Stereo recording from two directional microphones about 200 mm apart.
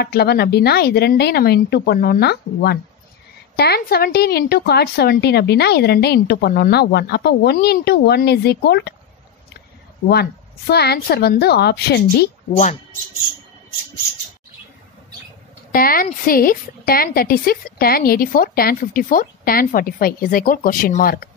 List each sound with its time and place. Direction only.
0.0 s a woman's voice: 55° left (ahead or behind)
10.7 s a woman's voice: 55° left (ahead or behind)
15.7 s a woman's voice: 45° left (ahead or behind)